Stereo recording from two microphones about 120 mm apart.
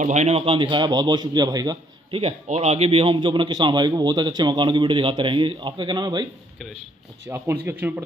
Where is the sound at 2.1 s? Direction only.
60° right (ahead or behind); by 6.3 s 40° right (ahead or behind).